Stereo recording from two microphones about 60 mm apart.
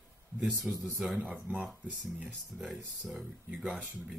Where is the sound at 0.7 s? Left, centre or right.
Right.